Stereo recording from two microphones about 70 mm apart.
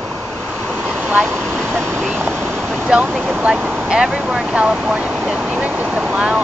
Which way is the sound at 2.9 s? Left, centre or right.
Centre.